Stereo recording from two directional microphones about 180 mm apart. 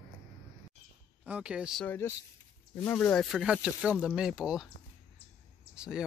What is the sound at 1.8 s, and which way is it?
Speech, 10° left (ahead or behind).